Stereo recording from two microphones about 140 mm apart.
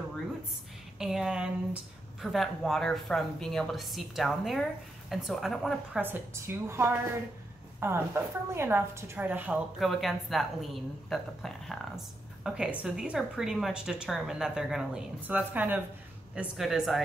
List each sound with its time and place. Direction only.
0.9 s a woman's voice: 5° right (ahead or behind)
5.9 s a woman's voice: 15° right (ahead or behind)
9.8 s a woman's voice: centre (ahead or behind)